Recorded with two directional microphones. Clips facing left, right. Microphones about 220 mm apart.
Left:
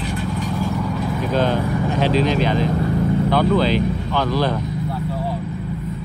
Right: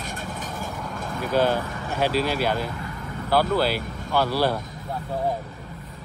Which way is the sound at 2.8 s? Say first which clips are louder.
Left 15 dB; 45° left (ahead or behind).